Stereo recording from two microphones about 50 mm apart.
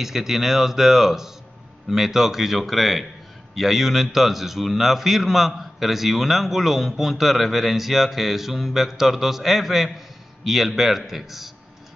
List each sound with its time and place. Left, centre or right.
0.0 s a man's voice: centre